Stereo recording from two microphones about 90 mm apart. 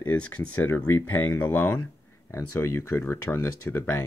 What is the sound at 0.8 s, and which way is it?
Speech, 25° left (ahead or behind).